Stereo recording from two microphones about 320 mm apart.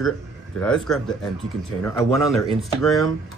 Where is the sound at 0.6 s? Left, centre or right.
Centre.